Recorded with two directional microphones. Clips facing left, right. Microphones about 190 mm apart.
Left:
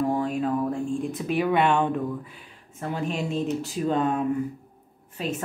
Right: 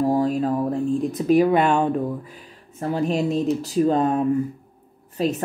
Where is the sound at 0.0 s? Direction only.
35° right (ahead or behind).